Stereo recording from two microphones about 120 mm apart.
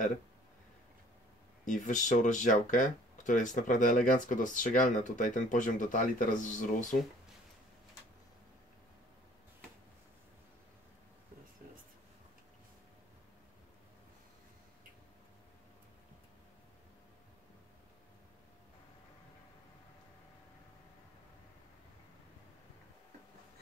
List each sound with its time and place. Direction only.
1.7 s speech: 90° left